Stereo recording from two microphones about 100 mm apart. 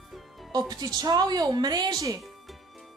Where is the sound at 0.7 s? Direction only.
40° right (ahead or behind).